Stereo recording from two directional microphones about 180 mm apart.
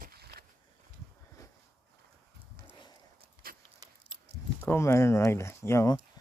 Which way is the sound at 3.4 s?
55° right (ahead or behind).